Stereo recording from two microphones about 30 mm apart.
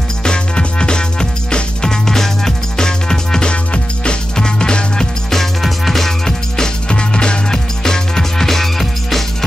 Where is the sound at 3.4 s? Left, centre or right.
Left.